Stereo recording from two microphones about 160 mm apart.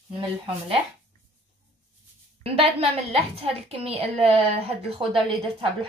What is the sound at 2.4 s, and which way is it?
A woman's voice, 35° right (ahead or behind).